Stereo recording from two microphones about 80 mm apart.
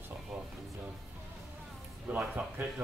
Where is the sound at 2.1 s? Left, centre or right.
Right.